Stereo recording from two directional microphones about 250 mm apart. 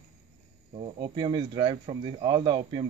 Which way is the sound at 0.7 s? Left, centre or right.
Right.